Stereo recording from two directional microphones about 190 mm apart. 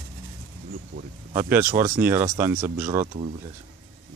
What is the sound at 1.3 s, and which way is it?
Speech, 10° right (ahead or behind).